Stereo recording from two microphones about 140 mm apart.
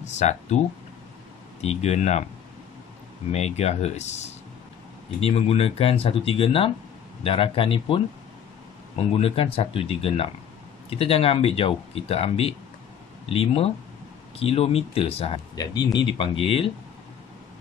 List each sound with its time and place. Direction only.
0.0 s speech: 55° left (ahead or behind)
1.6 s speech: 50° left (ahead or behind)
3.3 s speech: 50° left (ahead or behind)
15.5 s speech: 30° left (ahead or behind)